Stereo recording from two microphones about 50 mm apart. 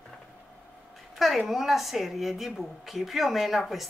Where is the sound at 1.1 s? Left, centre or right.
Centre.